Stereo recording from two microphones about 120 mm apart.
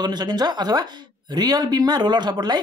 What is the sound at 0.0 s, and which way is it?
Speech, 35° right (ahead or behind).